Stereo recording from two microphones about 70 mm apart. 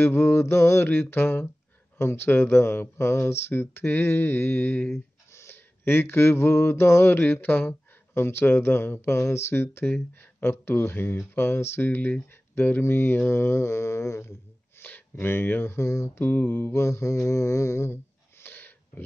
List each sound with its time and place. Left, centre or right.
0.0 s speech: left
0.8 s speech: left
5.3 s a sound: left
7.2 s speech: left
14.8 s speech: left
16.2 s speech: left
18.4 s a sound: left